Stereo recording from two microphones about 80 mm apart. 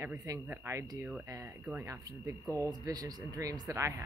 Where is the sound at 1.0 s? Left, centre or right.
Centre.